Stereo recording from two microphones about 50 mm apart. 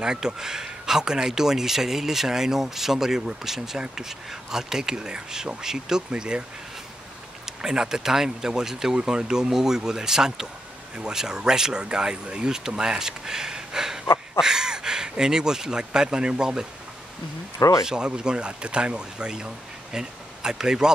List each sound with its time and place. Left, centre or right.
0.0 s speech: centre
7.6 s speech: centre
17.8 s speech: centre